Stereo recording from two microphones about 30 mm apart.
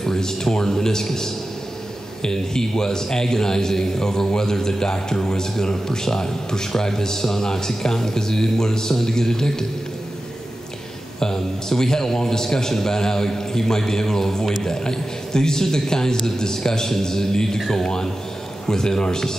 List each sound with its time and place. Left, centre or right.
0.0 s a man's voice: centre
11.1 s a man's voice: centre
17.6 s a man's voice: centre
17.8 s a man's voice: left